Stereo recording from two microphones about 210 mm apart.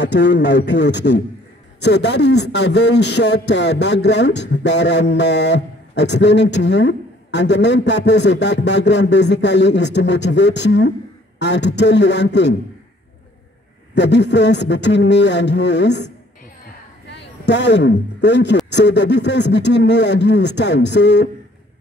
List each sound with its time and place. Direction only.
0.0 s a man's voice: 55° left (ahead or behind)
13.9 s a man's voice: 55° left (ahead or behind)
17.5 s a man's voice: 55° left (ahead or behind)